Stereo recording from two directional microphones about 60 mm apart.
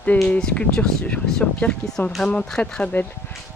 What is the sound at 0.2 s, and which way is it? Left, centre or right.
Speech, centre.